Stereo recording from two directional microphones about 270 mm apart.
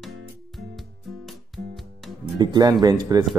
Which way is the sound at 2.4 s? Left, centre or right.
Centre.